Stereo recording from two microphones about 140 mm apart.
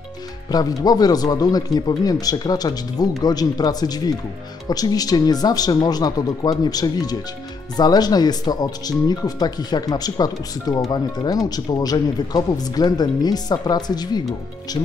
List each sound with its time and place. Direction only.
0.5 s speech: 30° left (ahead or behind)